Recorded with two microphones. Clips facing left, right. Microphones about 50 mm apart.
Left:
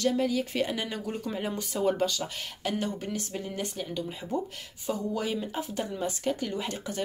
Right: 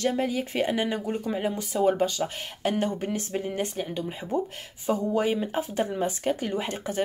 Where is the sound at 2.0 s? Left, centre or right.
Right.